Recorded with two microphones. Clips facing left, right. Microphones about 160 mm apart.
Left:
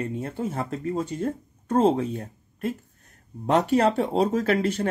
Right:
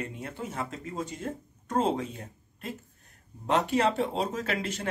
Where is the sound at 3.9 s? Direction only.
55° left (ahead or behind).